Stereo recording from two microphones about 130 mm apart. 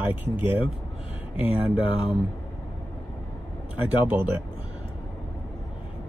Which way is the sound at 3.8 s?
15° right (ahead or behind).